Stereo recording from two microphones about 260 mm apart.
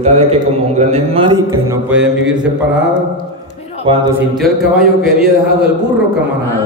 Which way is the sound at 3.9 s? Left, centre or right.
Centre.